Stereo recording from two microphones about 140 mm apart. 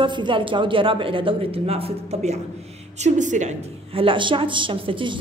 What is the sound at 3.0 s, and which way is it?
Speech, 60° right (ahead or behind).